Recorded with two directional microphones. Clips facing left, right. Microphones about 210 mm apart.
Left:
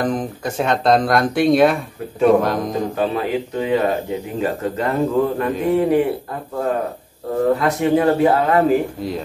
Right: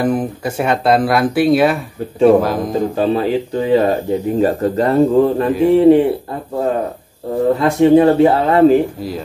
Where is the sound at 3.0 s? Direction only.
30° right (ahead or behind).